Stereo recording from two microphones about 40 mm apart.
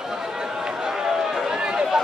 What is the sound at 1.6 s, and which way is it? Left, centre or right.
Run, right.